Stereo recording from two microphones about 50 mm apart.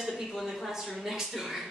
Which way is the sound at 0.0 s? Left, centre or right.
Centre.